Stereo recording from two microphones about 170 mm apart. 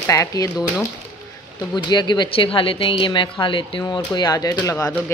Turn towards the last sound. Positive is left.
turn(degrees=20)  # may be behind; listen again after turning